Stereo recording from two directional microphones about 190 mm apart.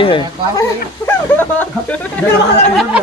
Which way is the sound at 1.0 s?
10° left (ahead or behind).